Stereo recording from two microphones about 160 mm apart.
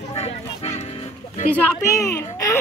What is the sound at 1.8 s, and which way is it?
Speech, 20° left (ahead or behind).